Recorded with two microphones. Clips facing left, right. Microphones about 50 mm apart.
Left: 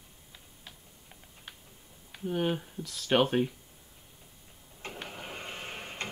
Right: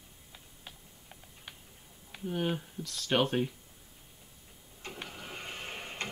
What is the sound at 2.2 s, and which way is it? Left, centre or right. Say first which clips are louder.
Speech: left 3 dB; centre.